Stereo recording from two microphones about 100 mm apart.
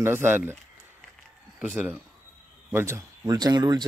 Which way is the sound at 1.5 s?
20° right (ahead or behind).